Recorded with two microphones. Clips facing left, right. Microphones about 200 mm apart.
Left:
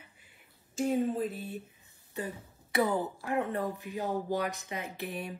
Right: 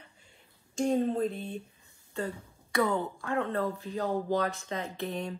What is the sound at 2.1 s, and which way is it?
Speech, 15° left (ahead or behind).